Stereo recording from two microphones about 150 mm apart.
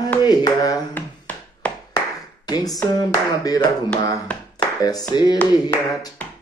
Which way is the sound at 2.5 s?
25° left (ahead or behind).